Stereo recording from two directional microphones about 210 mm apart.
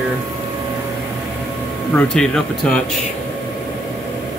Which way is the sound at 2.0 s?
5° left (ahead or behind).